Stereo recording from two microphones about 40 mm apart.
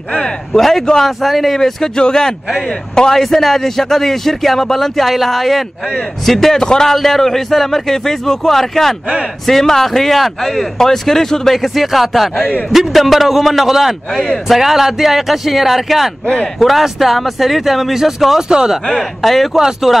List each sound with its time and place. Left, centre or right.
0.1 s a man's voice: left
0.6 s a man's voice: centre
3.2 s a man's voice: centre
6.6 s a man's voice: centre
6.9 s a man's voice: centre
11.5 s speech: centre
18.5 s speech: centre
18.9 s speech: centre